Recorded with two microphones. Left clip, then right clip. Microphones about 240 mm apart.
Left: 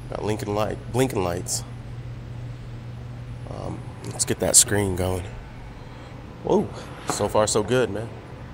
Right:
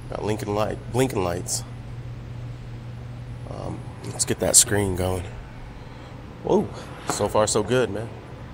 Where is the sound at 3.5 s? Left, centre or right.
Centre.